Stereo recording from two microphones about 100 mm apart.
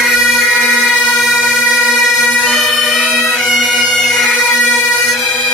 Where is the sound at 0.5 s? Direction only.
15° right (ahead or behind).